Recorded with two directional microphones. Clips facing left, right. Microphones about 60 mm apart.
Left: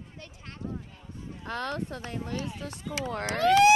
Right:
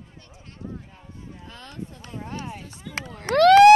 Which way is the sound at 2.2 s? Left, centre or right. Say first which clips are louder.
Even; right.